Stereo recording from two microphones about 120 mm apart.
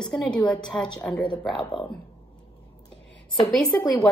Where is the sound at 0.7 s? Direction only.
25° left (ahead or behind).